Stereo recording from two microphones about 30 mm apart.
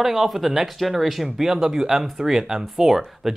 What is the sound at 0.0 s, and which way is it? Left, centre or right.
Speech, centre.